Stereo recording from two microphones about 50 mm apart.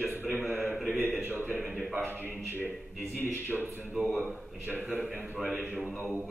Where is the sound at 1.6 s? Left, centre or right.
Centre.